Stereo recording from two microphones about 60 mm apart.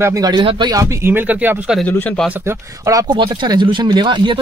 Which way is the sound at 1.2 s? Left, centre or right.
Right.